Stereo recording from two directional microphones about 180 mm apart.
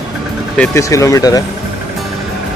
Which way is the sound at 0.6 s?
15° left (ahead or behind).